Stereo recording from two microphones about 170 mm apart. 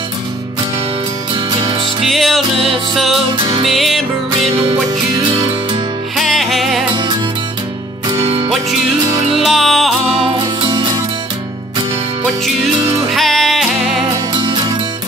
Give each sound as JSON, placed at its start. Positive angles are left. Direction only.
{"t": 1.3, "sound": "music", "side_deg": -30}
{"t": 2.0, "sound": "music", "side_deg": 0}
{"t": 3.7, "sound": "music", "side_deg": 0}
{"t": 4.5, "sound": "music", "side_deg": -30}
{"t": 6.1, "sound": "music", "side_deg": 0}
{"t": 8.2, "sound": "music", "side_deg": -35}
{"t": 9.4, "sound": "music", "side_deg": 0}
{"t": 10.0, "sound": "music", "side_deg": -35}
{"t": 13.1, "sound": "music", "side_deg": 0}
{"t": 14.3, "sound": "music", "side_deg": -25}